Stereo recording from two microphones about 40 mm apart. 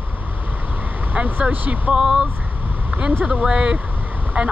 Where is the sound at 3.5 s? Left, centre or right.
Right.